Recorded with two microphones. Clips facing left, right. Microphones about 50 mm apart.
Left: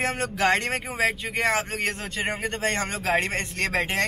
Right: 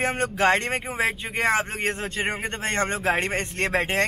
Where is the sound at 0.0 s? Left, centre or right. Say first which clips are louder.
Right 2 dB; centre.